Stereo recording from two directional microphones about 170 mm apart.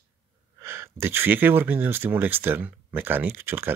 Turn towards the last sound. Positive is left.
turn(degrees=-10)  # may be behind; listen again after turning